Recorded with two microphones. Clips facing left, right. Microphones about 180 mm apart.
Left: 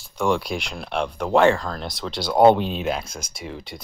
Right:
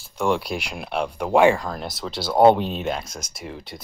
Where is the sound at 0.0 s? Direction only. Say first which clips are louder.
Even; 5° right (ahead or behind).